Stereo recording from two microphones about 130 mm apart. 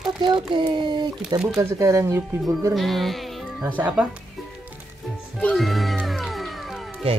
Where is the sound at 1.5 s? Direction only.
25° right (ahead or behind).